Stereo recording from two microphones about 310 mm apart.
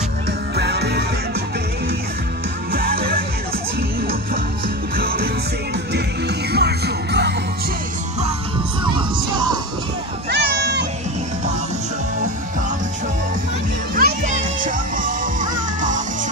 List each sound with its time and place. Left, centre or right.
0.6 s music: right
2.7 s music: right
4.9 s music: right
10.3 s a sound: right
13.9 s music: right